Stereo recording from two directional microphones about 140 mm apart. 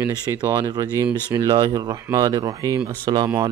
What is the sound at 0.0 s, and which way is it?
Speech, 20° right (ahead or behind).